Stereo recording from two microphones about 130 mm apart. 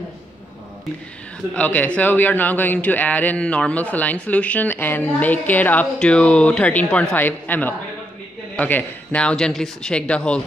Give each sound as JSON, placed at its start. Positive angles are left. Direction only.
{"t": 1.5, "sound": "a man's voice", "side_deg": 10}